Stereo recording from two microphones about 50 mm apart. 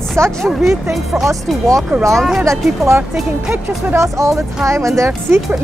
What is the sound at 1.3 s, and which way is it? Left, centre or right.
Speech, right.